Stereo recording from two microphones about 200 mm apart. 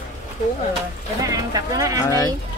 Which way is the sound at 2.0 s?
20° left (ahead or behind).